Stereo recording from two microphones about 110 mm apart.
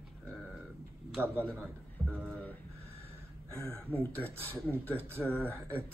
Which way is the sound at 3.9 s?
15° left (ahead or behind).